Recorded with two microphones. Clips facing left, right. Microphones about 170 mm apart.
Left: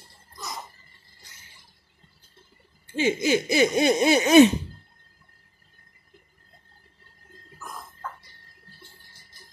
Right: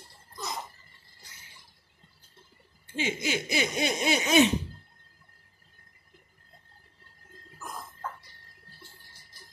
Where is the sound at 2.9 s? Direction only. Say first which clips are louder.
Left 8 dB; 45° left (ahead or behind).